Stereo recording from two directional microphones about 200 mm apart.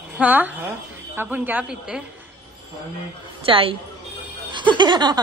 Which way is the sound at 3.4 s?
25° right (ahead or behind).